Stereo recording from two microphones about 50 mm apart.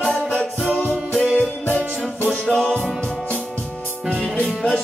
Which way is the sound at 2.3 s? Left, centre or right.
Centre.